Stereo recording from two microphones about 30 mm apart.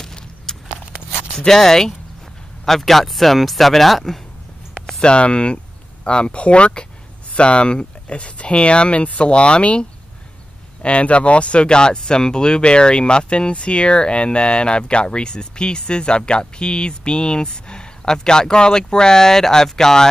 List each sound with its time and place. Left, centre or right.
0.5 s a sound: centre
1.4 s speech: centre
5.0 s speech: left; by 20.1 s centre